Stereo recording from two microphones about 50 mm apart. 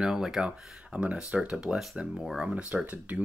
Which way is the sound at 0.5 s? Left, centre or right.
Right.